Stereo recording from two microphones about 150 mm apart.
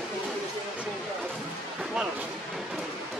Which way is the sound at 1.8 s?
5° right (ahead or behind).